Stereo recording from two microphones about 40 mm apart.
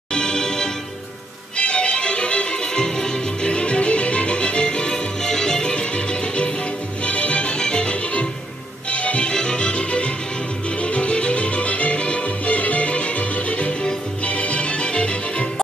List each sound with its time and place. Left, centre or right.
0.1 s music: centre
9.3 s music: centre